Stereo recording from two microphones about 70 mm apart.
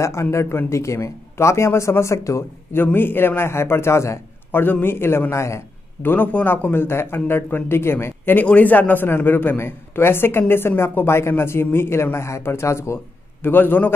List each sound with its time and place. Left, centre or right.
0.0 s speech: left
2.8 s a man's voice: left
6.0 s a man's voice: left
13.5 s a man's voice: left